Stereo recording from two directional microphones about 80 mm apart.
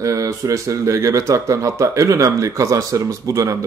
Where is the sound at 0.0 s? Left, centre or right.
Right.